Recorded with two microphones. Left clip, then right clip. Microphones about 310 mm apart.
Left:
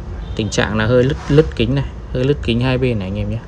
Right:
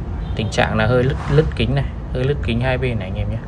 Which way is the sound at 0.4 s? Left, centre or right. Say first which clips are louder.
Even; centre.